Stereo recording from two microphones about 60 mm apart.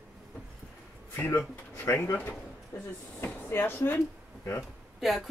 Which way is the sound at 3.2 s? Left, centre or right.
Left.